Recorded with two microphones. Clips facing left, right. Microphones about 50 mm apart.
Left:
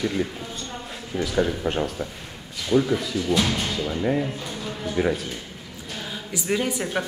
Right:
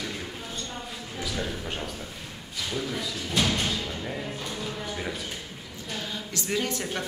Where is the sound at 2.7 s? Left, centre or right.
Left.